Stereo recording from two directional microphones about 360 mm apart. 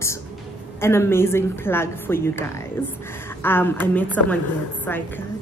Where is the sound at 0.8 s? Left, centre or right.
Centre.